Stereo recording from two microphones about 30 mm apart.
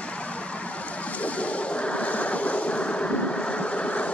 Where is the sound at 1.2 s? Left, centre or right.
Left.